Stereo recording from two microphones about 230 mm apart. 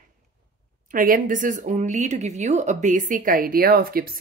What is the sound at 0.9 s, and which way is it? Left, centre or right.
A woman's voice, right.